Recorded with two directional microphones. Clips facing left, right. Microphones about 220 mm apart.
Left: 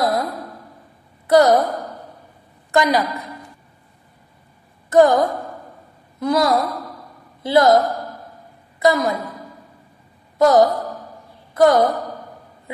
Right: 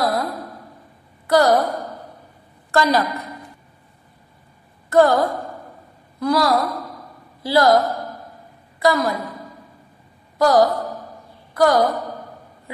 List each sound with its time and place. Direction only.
0.0 s a sound: 20° left (ahead or behind)
1.2 s a woman's voice: 20° left (ahead or behind)
2.7 s a woman's voice: 15° left (ahead or behind)
4.8 s a woman's voice: 20° left (ahead or behind)
10.4 s a woman's voice: 20° left (ahead or behind)